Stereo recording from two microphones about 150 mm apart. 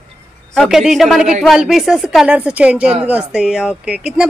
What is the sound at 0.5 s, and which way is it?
Speech, 5° right (ahead or behind).